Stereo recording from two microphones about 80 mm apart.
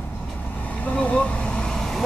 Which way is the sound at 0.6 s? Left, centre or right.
Centre.